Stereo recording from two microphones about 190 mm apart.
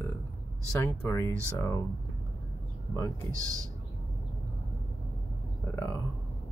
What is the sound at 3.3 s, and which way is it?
Speech, 20° right (ahead or behind).